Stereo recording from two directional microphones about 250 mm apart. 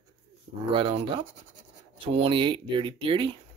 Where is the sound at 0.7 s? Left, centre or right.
Centre.